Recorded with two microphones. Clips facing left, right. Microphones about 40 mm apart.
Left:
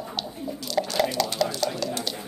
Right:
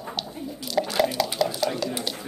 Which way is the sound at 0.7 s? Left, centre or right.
Centre.